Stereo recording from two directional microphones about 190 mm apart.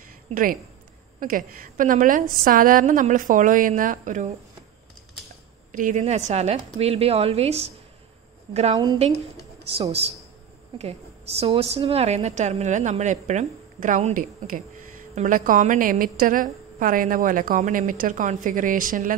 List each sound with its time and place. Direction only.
0.3 s a woman's voice: 45° right (ahead or behind)
5.7 s a woman's voice: 40° right (ahead or behind)
8.7 s a woman's voice: 25° right (ahead or behind); by 19.1 s 45° right (ahead or behind)